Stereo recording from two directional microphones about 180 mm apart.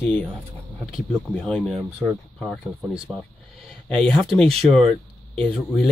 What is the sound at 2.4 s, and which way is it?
Speech, 5° left (ahead or behind).